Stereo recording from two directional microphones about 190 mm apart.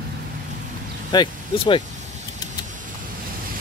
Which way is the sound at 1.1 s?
25° left (ahead or behind).